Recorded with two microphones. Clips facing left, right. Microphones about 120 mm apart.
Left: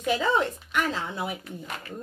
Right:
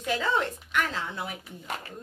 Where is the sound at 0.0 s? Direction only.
20° left (ahead or behind).